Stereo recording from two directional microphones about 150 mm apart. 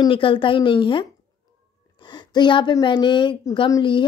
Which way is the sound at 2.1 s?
30° left (ahead or behind).